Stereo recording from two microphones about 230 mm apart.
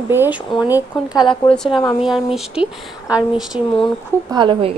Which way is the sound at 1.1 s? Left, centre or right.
Centre.